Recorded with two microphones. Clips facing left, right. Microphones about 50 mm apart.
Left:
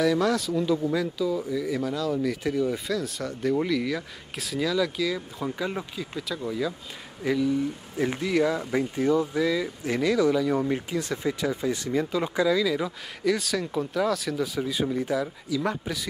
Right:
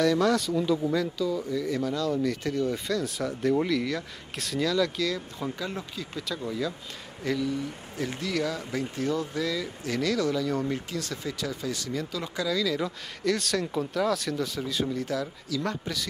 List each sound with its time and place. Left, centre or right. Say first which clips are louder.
0.0 s speech: even; centre